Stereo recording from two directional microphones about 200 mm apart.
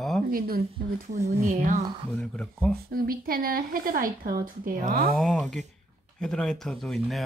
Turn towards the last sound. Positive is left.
turn(degrees=0)  # may be behind; listen again after turning